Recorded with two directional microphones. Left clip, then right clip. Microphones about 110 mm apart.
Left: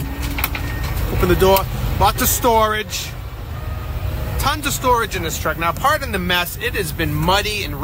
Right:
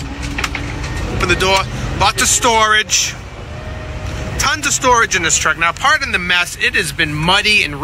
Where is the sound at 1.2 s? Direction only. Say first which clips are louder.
Right 1 dB; 40° left (ahead or behind).